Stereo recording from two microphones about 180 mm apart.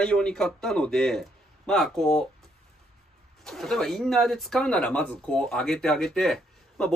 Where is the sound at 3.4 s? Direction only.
Centre (ahead or behind).